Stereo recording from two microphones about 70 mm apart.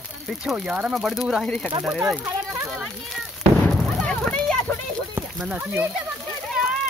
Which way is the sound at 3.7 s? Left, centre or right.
Centre.